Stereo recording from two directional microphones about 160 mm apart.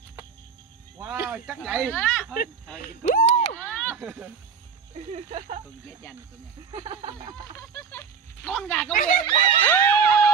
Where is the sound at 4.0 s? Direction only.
10° right (ahead or behind).